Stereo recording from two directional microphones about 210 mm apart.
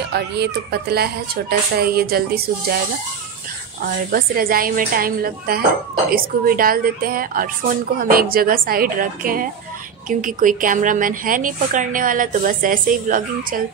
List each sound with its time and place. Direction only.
0.1 s speech: 50° right (ahead or behind)
3.8 s a woman's voice: 45° right (ahead or behind)